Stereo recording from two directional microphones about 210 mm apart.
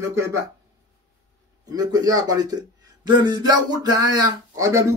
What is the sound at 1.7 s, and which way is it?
Speech, 15° right (ahead or behind).